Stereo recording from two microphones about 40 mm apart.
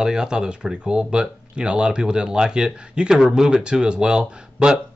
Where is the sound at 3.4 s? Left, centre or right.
Right.